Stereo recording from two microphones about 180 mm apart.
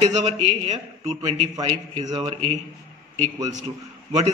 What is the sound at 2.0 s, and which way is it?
Speech, 25° right (ahead or behind).